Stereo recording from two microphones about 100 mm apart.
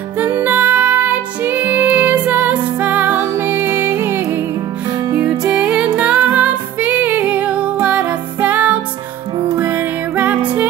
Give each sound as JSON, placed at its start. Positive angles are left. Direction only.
{"t": 0.2, "sound": "music", "side_deg": -20}